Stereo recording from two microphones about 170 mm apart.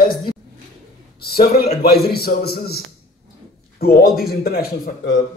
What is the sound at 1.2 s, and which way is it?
A man's voice, 65° left (ahead or behind).